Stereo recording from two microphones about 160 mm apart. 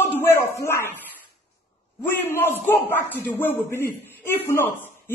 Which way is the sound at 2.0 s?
15° left (ahead or behind).